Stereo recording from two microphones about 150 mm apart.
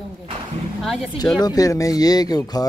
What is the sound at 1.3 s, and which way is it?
Speech, 25° left (ahead or behind).